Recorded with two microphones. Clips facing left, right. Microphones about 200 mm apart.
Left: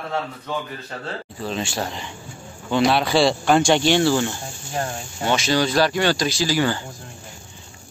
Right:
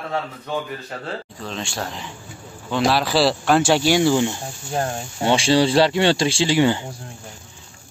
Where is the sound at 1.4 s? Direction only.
5° left (ahead or behind); by 4.4 s 15° right (ahead or behind).